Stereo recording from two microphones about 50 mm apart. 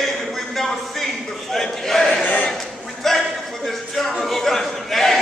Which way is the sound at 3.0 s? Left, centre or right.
Centre.